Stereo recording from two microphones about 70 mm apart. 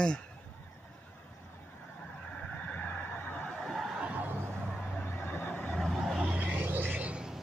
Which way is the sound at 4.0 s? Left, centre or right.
Centre.